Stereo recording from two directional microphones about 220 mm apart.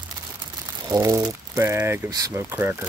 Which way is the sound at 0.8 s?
15° right (ahead or behind).